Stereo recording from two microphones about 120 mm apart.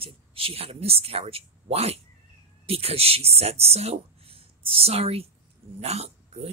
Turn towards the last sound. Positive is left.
turn(degrees=-60)  # may be behind; listen again after turning